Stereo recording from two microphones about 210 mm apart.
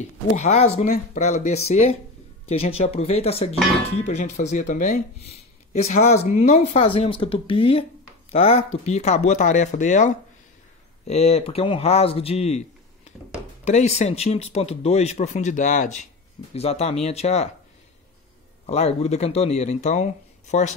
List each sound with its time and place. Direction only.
0.4 s speech: 30° left (ahead or behind)
18.7 s speech: 30° left (ahead or behind)